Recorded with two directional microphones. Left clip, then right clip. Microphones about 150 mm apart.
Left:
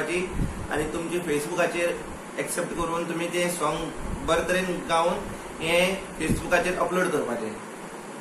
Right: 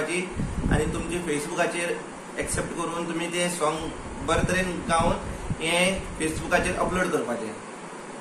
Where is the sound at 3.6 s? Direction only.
15° right (ahead or behind).